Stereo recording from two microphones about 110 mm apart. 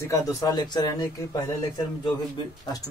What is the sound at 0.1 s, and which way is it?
Speech, 30° left (ahead or behind).